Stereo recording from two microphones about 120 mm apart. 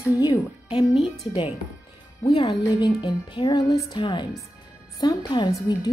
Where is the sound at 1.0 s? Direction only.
50° left (ahead or behind).